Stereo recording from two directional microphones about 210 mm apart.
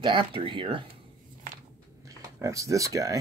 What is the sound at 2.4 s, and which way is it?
Speech, 15° right (ahead or behind).